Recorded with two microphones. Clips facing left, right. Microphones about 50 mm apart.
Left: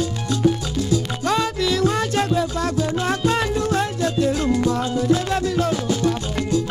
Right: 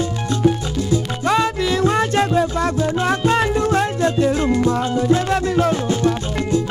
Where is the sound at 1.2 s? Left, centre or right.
Right.